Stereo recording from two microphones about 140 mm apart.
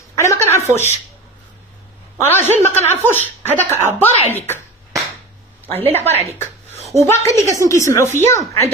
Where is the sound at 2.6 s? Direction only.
15° left (ahead or behind).